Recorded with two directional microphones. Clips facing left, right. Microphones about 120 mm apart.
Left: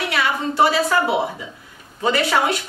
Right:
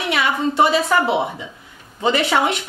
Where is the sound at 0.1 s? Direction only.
20° right (ahead or behind).